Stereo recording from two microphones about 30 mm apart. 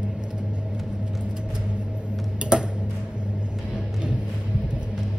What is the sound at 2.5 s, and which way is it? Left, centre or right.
Tick-tock, right.